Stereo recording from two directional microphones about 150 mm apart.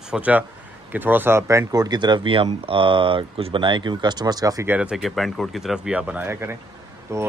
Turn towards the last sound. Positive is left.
turn(degrees=-20)  # may be behind; listen again after turning